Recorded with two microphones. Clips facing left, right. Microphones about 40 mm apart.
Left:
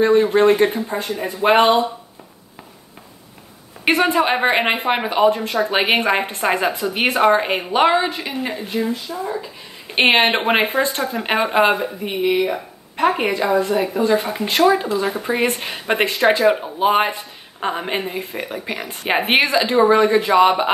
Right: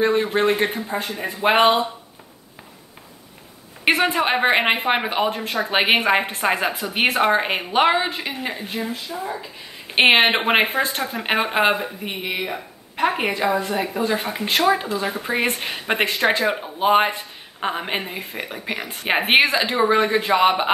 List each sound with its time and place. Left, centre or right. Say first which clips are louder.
0.0 s speech: left 5 dB; centre
3.8 s speech: left 2 dB; centre
9.9 s speech: even; centre